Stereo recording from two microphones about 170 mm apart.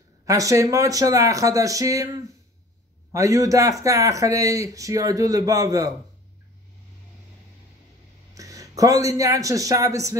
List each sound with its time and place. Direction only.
0.2 s speech: 20° right (ahead or behind)
8.4 s a man's voice: 20° right (ahead or behind)